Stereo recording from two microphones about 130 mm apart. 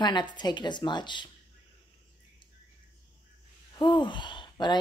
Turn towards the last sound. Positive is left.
turn(degrees=35)  # may be behind; listen again after turning